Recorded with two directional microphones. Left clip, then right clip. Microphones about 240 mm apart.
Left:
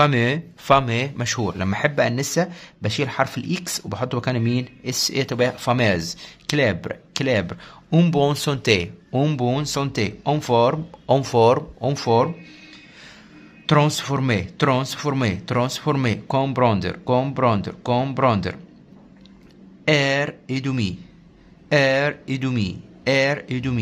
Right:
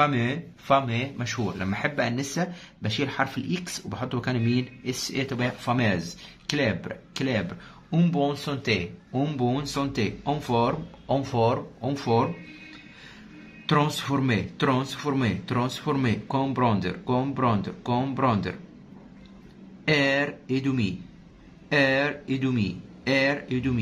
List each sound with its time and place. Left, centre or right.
0.0 s speech: left
13.7 s speech: left
19.8 s speech: left